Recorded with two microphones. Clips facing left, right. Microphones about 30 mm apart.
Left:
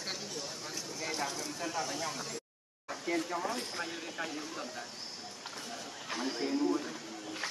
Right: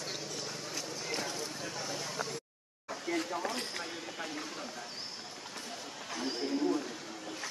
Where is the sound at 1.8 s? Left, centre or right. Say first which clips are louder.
Left 1 dB; centre.